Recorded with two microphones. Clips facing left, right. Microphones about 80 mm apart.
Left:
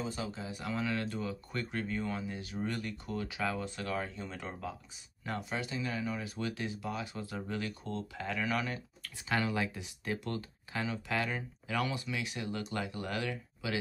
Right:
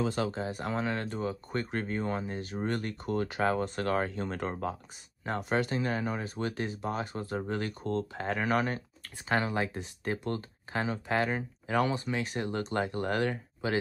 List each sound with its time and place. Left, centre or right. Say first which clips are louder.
0.0 s speech: right 8 dB; right